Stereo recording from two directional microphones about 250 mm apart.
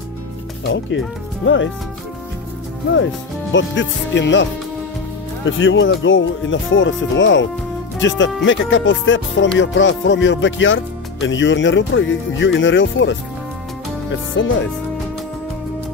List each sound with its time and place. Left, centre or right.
0.7 s speech: left
3.5 s speech: left
14.3 s speech: left